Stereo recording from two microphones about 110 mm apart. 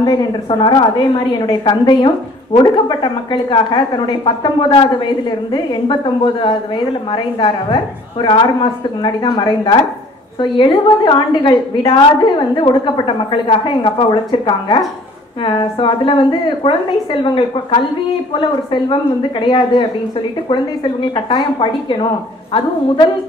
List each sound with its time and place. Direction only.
0.0 s a woman's voice: 40° left (ahead or behind)